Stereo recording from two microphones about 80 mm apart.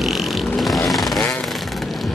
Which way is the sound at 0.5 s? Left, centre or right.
Centre.